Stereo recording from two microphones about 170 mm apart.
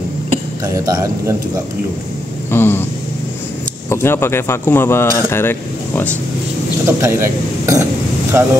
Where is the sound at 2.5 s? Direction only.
10° left (ahead or behind).